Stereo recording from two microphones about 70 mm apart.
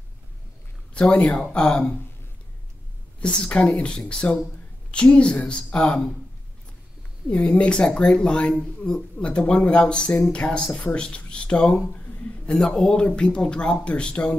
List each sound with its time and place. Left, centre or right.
0.9 s speech: centre
3.2 s speech: centre
7.2 s speech: centre